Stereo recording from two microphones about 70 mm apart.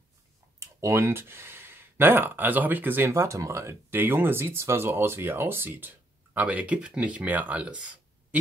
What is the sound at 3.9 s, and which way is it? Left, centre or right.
Speech, right.